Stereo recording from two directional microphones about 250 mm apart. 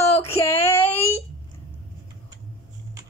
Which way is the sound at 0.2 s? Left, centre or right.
Centre.